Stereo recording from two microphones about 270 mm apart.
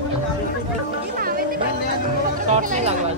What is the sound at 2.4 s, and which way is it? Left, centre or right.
Chatter, right.